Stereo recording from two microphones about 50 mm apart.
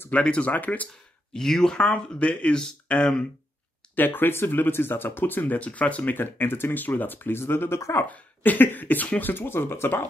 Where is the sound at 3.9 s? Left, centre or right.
Left.